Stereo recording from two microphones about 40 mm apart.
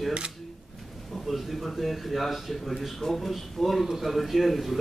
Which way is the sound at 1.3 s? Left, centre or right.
Centre.